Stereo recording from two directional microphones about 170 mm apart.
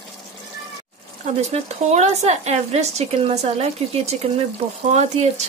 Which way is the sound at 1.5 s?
40° right (ahead or behind).